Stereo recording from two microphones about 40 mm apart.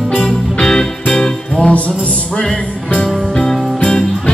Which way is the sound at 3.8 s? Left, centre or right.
Left.